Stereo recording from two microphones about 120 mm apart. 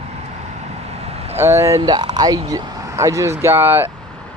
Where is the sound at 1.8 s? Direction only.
35° right (ahead or behind); by 3.9 s 20° right (ahead or behind).